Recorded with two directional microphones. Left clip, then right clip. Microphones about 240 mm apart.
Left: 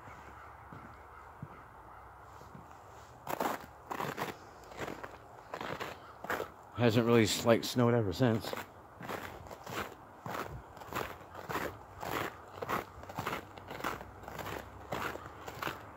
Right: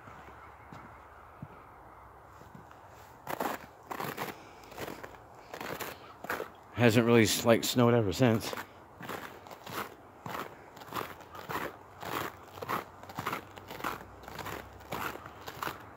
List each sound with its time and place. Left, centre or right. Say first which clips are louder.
3.3 s scissors: even; centre
5.7 s a sound: right 1 dB; centre
6.7 s speech: right 3 dB; right
8.5 s walk: right 2 dB; centre
9.8 s biting: right 2 dB; centre
14.4 s a sound: right 1 dB; centre